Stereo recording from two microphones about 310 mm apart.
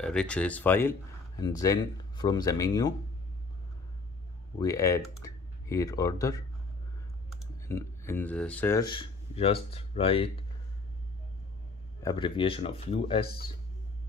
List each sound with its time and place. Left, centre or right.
0.0 s speech: centre
4.6 s speech: centre
7.6 s speech: centre
12.0 s speech: centre